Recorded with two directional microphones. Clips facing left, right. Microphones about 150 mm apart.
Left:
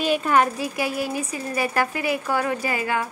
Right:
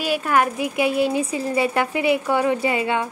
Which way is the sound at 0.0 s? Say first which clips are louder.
Even; 10° right (ahead or behind).